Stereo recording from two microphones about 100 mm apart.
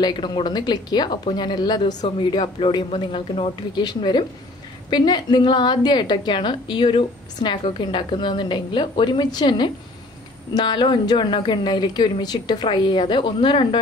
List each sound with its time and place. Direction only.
0.0 s a woman's voice: 50° left (ahead or behind)
2.0 s a man's voice: 60° left (ahead or behind)
3.8 s a woman's voice: 45° left (ahead or behind)